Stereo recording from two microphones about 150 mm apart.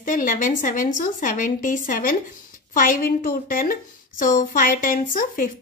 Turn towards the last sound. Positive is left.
turn(degrees=65)  # may be behind; listen again after turning